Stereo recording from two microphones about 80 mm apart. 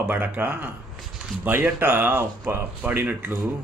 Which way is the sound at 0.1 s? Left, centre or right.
Right.